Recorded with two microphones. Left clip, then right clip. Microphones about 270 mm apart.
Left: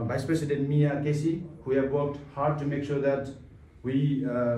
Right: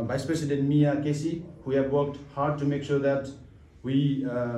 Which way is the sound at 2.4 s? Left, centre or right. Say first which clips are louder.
Right 1 dB; right.